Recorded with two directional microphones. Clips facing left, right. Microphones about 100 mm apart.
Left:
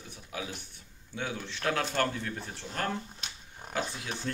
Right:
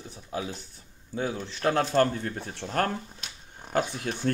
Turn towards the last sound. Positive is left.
turn(degrees=-50)  # may be behind; listen again after turning